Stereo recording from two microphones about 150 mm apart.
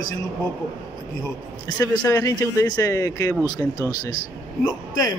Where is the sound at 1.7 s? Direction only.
20° left (ahead or behind).